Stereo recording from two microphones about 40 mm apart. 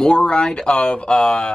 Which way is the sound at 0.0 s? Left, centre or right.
Left.